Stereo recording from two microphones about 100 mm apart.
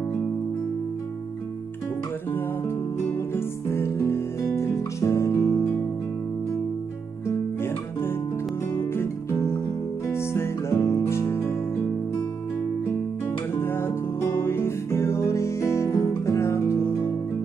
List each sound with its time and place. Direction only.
3.3 s music: 25° left (ahead or behind)
7.2 s guitar: 25° left (ahead or behind)
8.7 s music: 25° left (ahead or behind)
13.6 s music: 25° left (ahead or behind)